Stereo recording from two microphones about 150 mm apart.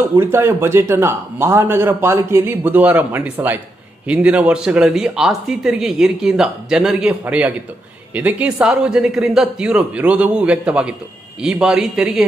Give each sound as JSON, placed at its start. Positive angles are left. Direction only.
{"t": 0.0, "sound": "a man's voice", "side_deg": -15}